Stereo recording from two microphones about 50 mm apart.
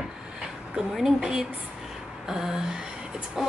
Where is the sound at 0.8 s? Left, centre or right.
Centre.